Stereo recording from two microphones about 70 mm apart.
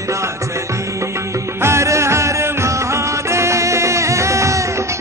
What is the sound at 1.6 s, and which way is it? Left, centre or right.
Music, right.